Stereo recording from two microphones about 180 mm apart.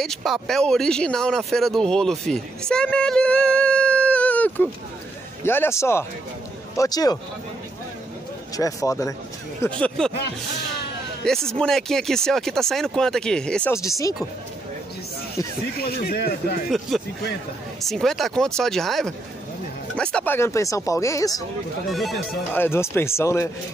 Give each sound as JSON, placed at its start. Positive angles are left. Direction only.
{"t": 0.0, "sound": "speech", "side_deg": 0}
{"t": 8.5, "sound": "speech", "side_deg": 20}
{"t": 9.6, "sound": "speech", "side_deg": 5}
{"t": 11.2, "sound": "speech", "side_deg": 5}
{"t": 13.7, "sound": "speech", "side_deg": 15}
{"t": 15.8, "sound": "speech", "side_deg": 60}
{"t": 16.9, "sound": "speech", "side_deg": 0}
{"t": 21.9, "sound": "speech", "side_deg": 0}
{"t": 22.5, "sound": "speech", "side_deg": 10}